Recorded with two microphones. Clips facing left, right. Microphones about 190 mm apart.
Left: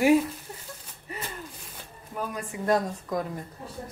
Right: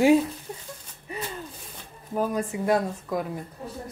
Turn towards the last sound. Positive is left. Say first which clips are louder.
# right 1 dB
turn(degrees=-5)  # may be behind; listen again after turning